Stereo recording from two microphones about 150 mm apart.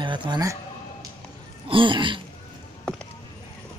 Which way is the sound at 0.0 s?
30° right (ahead or behind).